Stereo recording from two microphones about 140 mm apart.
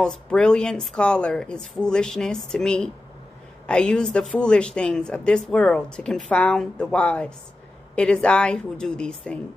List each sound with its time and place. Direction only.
0.0 s a woman's voice: 5° left (ahead or behind)